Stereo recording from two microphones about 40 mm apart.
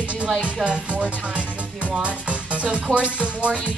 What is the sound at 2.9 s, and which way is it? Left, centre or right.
Speech, left.